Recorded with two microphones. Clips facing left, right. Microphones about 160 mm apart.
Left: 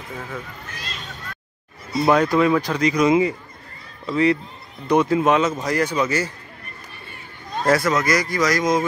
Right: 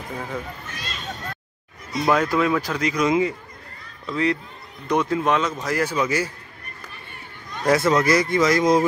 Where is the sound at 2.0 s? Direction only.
Centre (ahead or behind).